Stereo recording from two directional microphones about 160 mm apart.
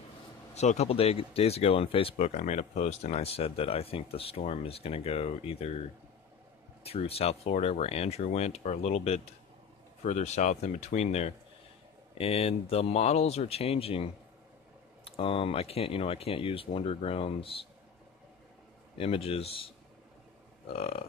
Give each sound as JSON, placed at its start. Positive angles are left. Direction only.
{"t": 0.6, "sound": "speech", "side_deg": 45}
{"t": 6.8, "sound": "speech", "side_deg": 40}
{"t": 15.0, "sound": "speech", "side_deg": 35}
{"t": 18.9, "sound": "speech", "side_deg": 35}
{"t": 20.7, "sound": "speech", "side_deg": 40}